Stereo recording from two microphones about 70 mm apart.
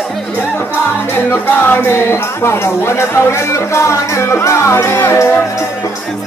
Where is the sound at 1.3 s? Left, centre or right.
Left.